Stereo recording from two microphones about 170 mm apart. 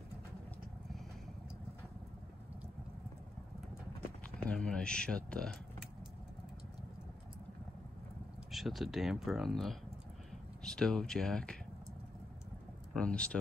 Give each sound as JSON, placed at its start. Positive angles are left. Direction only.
{"t": 4.5, "sound": "speech", "side_deg": 5}
{"t": 8.5, "sound": "speech", "side_deg": 0}
{"t": 12.9, "sound": "speech", "side_deg": 5}